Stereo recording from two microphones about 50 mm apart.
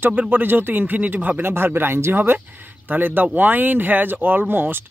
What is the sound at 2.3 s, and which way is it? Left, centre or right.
Speech, right.